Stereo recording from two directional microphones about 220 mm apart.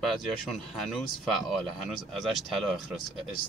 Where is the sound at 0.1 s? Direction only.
Centre (ahead or behind).